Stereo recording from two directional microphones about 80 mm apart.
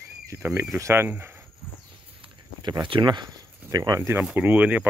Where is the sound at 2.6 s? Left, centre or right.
Right.